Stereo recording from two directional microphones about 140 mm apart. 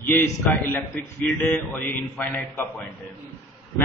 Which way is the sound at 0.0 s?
15° left (ahead or behind).